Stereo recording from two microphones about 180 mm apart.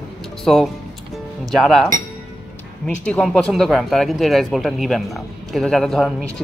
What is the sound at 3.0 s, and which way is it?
Speech, 5° left (ahead or behind).